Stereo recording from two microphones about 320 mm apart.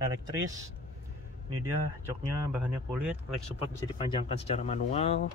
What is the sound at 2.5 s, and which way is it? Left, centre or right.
Speech, centre.